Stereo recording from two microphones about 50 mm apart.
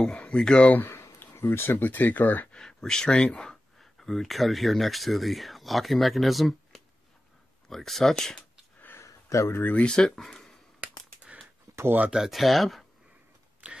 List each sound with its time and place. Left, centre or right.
0.0 s speech: left
1.3 s speech: left
1.7 s speech: left
2.5 s speech: centre
3.8 s speech: centre
8.9 s a sound: left
9.6 s speech: left
9.8 s speech: centre
10.2 s a sound: centre
12.3 s speech: centre
13.6 s a sound: right